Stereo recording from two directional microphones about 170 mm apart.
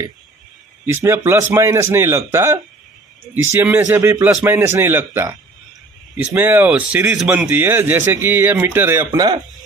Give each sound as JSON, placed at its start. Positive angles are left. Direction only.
{"t": 0.9, "sound": "a man's voice", "side_deg": -15}
{"t": 6.3, "sound": "a man's voice", "side_deg": -10}